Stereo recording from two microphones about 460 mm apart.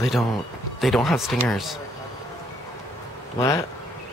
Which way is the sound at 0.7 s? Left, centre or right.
Centre.